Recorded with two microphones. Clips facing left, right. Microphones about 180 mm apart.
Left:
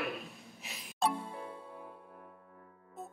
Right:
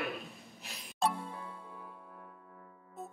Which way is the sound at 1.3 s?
25° left (ahead or behind).